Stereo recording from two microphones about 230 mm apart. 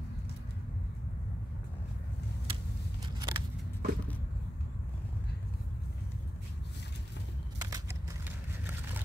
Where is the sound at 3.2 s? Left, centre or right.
Centre.